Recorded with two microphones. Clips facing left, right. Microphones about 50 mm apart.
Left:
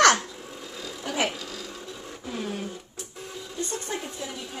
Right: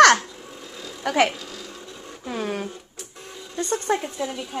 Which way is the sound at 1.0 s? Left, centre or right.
Right.